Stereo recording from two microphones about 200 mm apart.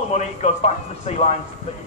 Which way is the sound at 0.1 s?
35° left (ahead or behind).